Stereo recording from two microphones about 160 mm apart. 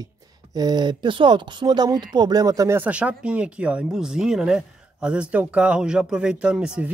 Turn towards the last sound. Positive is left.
turn(degrees=-5)  # may be behind; listen again after turning